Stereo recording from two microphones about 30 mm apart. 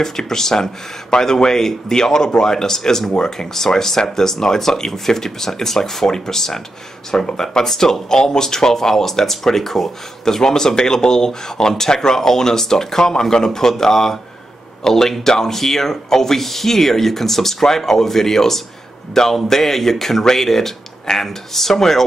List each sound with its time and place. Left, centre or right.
0.2 s speech: centre
21.1 s speech: left
21.5 s speech: centre